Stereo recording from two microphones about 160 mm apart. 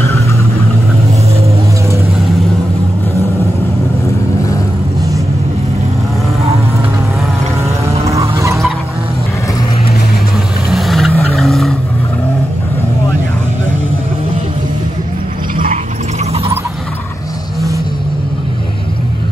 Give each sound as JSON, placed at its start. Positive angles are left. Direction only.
{"t": 7.9, "sound": "vehicle", "side_deg": -20}
{"t": 10.7, "sound": "vehicle", "side_deg": 0}